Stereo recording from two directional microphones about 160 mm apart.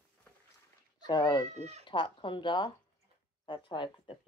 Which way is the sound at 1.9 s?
30° left (ahead or behind).